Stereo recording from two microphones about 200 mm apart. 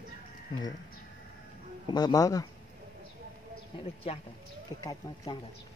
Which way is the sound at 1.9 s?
20° left (ahead or behind).